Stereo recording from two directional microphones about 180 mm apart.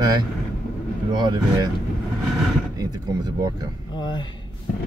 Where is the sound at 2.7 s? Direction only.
20° right (ahead or behind).